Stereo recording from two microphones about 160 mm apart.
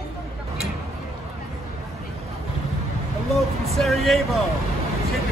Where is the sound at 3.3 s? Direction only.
Centre (ahead or behind).